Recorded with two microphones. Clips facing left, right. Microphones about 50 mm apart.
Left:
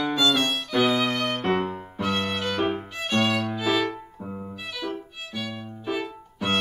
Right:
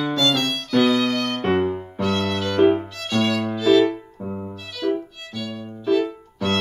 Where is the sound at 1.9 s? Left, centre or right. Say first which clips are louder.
Right 2 dB; centre.